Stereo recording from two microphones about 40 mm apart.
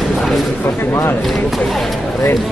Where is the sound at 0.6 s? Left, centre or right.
Left.